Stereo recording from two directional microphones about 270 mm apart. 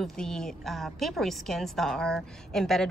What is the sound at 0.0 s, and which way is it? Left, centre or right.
A woman's voice, centre.